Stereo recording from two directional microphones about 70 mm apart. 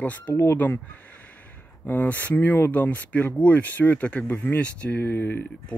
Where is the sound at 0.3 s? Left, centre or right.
Left.